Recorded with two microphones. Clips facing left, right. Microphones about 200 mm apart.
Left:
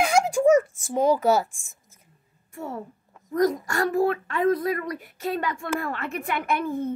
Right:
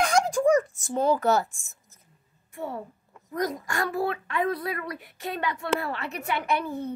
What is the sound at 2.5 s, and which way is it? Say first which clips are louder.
A woman's voice: even; 45° left (ahead or behind).